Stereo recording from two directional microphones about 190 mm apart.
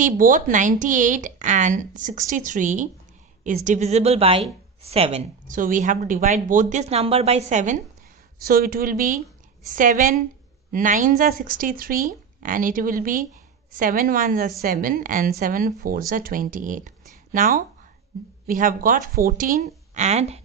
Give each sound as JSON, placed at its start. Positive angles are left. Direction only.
{"t": 0.0, "sound": "speech", "side_deg": -45}
{"t": 5.5, "sound": "speech", "side_deg": -45}
{"t": 8.5, "sound": "speech", "side_deg": -50}